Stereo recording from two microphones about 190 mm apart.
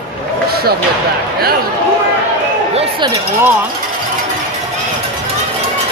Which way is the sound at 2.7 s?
30° right (ahead or behind).